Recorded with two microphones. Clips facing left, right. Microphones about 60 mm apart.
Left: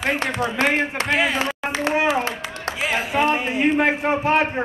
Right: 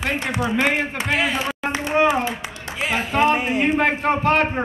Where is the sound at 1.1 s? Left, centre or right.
Centre.